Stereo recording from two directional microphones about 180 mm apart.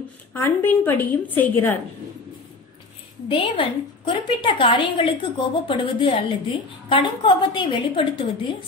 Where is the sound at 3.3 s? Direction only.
25° left (ahead or behind).